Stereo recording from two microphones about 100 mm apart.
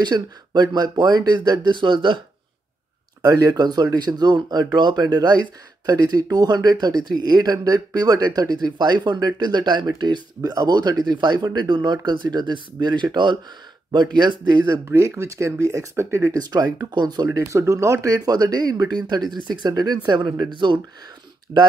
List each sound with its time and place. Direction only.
0.0 s speech: 45° right (ahead or behind)
3.2 s speech: 40° right (ahead or behind)
14.7 s speech: 30° right (ahead or behind)
17.5 s speech: 30° right (ahead or behind)